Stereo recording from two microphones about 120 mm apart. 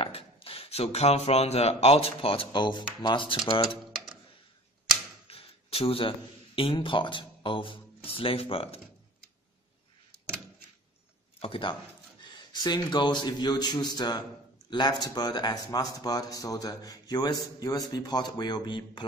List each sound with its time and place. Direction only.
0.0 s speech: 50° left (ahead or behind)
5.3 s speech: 55° left (ahead or behind)
11.3 s speech: 50° left (ahead or behind)
12.3 s speech: 35° left (ahead or behind)